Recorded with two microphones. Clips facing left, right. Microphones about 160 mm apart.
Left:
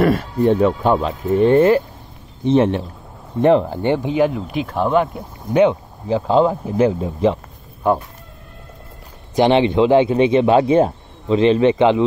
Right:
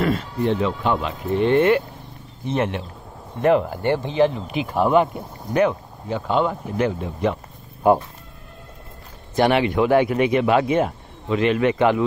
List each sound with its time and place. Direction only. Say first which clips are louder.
0.0 s speech: left 6 dB; 55° left (ahead or behind); by 3.8 s 30° left (ahead or behind)
3.8 s speech: left 2 dB; 15° left (ahead or behind)
4.6 s speech: right 1 dB; 5° right (ahead or behind)
5.5 s speech: left 5 dB; 25° left (ahead or behind)
9.3 s speech: left 4 dB; 25° left (ahead or behind)